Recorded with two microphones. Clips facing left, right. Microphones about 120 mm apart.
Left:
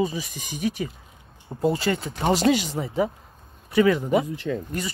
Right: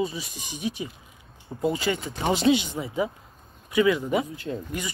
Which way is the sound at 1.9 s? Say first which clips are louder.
Left 2 dB; 45° left (ahead or behind).